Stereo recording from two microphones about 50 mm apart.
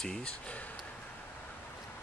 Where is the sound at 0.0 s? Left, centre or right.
Centre.